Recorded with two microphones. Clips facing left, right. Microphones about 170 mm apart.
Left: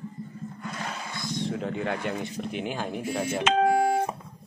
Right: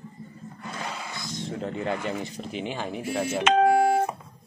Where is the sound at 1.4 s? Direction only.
Centre (ahead or behind).